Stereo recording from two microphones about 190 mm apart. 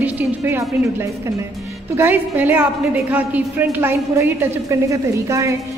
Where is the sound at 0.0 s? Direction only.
15° right (ahead or behind).